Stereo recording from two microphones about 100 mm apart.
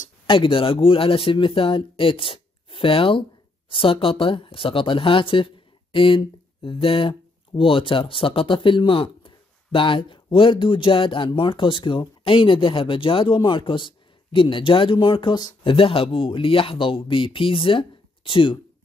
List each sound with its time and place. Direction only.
0.3 s speech: 60° left (ahead or behind)
15.6 s speech: 65° left (ahead or behind)